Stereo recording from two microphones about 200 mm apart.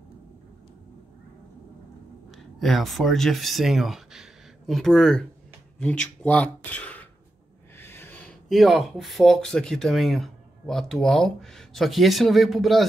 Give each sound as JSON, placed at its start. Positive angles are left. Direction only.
{"t": 2.3, "sound": "speech", "side_deg": 0}